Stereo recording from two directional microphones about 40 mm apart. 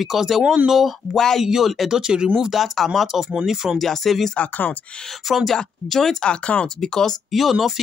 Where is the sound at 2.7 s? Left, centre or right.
Centre.